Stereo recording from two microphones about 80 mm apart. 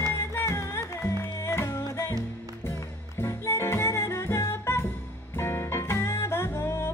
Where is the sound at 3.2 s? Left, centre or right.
Left.